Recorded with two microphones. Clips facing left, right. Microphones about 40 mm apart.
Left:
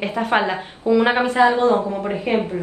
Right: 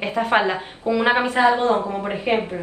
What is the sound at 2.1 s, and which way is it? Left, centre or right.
Speech, right.